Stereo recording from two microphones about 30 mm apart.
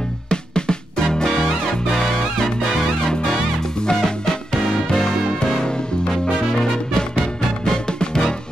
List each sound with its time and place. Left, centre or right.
0.3 s music: left; by 2.8 s centre
3.9 s music: centre
5.4 s music: left